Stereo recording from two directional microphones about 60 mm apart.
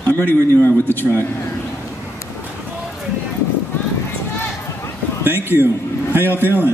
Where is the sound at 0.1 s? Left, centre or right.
Left.